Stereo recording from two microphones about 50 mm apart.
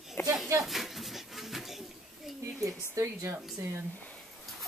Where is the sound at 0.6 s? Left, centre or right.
Centre.